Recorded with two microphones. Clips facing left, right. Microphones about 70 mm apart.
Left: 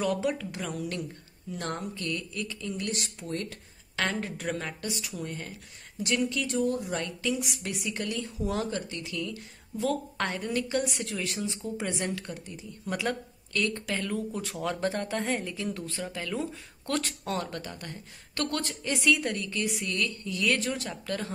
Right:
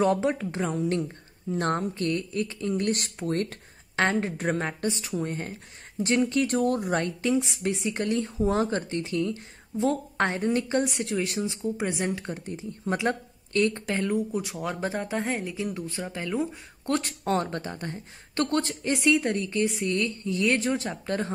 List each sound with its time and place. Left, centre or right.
0.0 s a woman's voice: right
2.7 s speech: right
4.0 s a woman's voice: right